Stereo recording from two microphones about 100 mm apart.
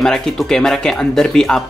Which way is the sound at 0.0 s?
5° left (ahead or behind).